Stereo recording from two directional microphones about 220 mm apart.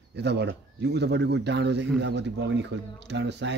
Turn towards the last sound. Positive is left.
turn(degrees=-50)  # may be behind; listen again after turning